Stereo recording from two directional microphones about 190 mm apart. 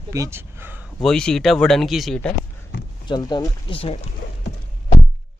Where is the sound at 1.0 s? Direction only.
5° left (ahead or behind).